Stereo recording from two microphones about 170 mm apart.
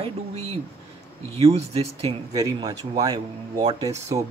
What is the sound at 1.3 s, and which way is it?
Speech, 40° right (ahead or behind).